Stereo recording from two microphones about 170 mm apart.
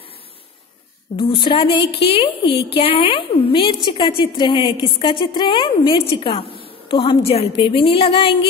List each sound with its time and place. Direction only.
1.1 s a woman's voice: 30° left (ahead or behind)
1.9 s a woman's voice: 80° left
2.8 s a woman's voice: 35° left (ahead or behind)